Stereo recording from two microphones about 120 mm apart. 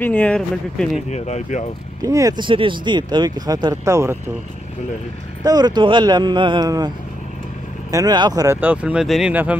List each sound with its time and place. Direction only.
0.0 s speech: 10° left (ahead or behind)
1.1 s speech: 70° left (ahead or behind)
2.0 s speech: 30° right (ahead or behind)
2.3 s speech: 45° right (ahead or behind); by 4.2 s 25° right (ahead or behind)
5.4 s speech: 35° right (ahead or behind)
7.9 s speech: 35° right (ahead or behind)
8.5 s speech: 10° right (ahead or behind)
9.3 s speech: 15° right (ahead or behind)